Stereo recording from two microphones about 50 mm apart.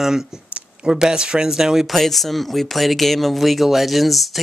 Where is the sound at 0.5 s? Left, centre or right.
Right.